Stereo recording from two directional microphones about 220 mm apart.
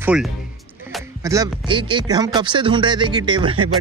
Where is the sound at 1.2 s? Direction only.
15° right (ahead or behind).